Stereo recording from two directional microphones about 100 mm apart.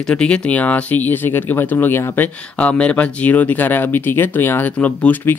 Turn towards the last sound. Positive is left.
turn(degrees=15)  # may be behind; listen again after turning